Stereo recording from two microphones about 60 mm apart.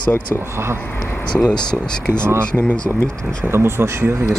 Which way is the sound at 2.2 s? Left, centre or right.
Right.